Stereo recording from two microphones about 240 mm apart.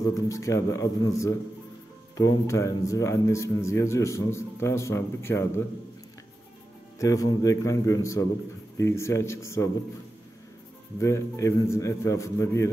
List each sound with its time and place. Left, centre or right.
0.1 s a man's voice: centre
7.0 s a man's voice: centre
11.0 s a man's voice: centre